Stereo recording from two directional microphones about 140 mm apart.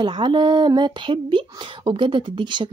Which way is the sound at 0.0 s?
35° right (ahead or behind).